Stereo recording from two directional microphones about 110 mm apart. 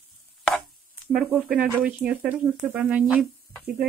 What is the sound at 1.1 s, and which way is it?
Speech, 10° right (ahead or behind).